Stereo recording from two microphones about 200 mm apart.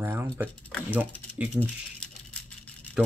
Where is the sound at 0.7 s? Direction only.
5° left (ahead or behind).